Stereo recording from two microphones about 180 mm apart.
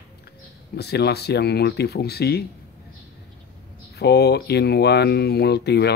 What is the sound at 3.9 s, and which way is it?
Speech, 65° left (ahead or behind).